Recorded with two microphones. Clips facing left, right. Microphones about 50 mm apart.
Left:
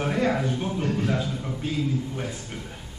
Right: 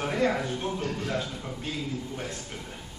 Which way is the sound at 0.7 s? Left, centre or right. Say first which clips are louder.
Left 5 dB; centre.